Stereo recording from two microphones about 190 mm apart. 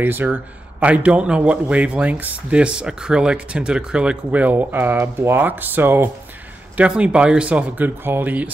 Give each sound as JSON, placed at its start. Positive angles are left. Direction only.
{"t": 0.0, "sound": "a man's voice", "side_deg": -10}